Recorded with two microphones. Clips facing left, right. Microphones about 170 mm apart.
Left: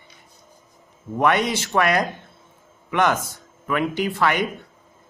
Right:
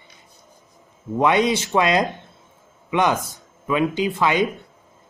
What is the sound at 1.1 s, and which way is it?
A man's voice, 15° right (ahead or behind).